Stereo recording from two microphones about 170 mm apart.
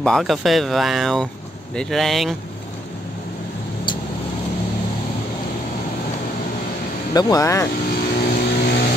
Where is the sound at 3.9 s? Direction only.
25° left (ahead or behind).